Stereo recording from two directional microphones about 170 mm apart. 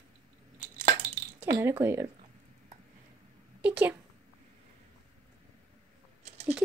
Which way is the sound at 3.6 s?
10° right (ahead or behind).